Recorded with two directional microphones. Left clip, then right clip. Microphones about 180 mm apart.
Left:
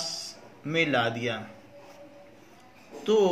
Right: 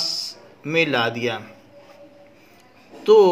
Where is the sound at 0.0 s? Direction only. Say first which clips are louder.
Right 9 dB; 55° right (ahead or behind).